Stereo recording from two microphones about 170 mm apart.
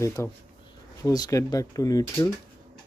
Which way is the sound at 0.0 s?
15° left (ahead or behind).